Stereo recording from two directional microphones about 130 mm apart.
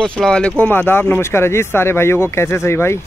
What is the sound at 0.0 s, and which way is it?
Speech, 5° left (ahead or behind).